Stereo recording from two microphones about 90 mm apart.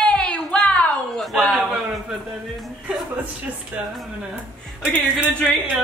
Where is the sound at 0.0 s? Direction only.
10° left (ahead or behind).